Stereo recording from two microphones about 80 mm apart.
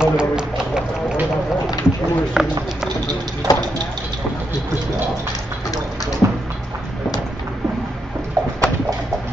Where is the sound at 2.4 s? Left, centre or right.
Centre.